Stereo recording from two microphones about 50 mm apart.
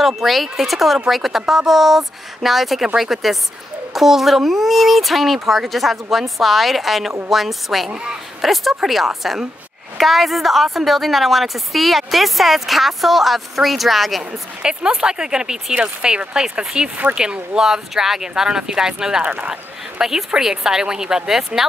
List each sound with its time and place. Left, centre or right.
0.0 s a woman's voice: centre
14.6 s speech: centre
19.2 s speech: right
20.0 s speech: centre